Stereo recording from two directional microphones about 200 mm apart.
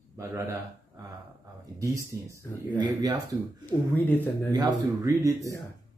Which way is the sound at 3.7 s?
10° left (ahead or behind).